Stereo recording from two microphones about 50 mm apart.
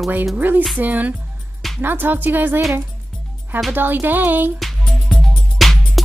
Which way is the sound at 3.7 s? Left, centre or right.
Right.